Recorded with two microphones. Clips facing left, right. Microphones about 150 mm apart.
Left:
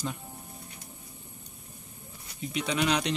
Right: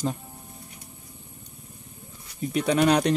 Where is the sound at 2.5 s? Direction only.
50° right (ahead or behind).